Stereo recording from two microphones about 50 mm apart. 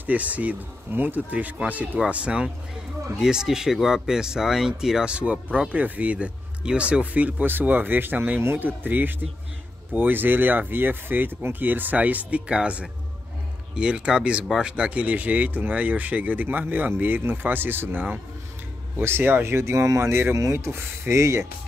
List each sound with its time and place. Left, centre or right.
0.0 s speech: right
3.2 s speech: centre; by 19.4 s right
19.4 s speech: right